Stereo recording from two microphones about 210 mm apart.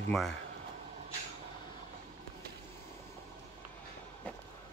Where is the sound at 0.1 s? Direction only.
Centre (ahead or behind).